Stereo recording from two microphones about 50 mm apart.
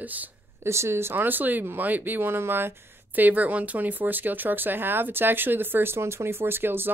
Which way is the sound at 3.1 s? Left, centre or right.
Right.